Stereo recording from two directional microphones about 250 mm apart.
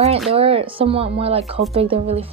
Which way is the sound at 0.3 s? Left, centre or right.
Right.